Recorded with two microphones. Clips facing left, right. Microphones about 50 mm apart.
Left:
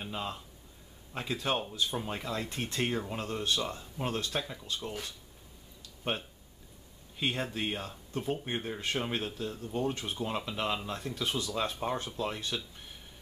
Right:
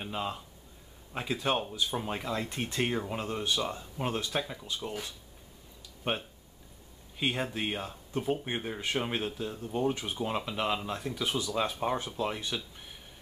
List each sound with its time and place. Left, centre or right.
0.0 s speech: centre
6.0 s speech: centre